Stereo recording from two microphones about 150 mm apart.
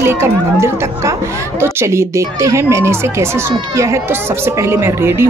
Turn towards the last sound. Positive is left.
turn(degrees=-15)  # may be behind; listen again after turning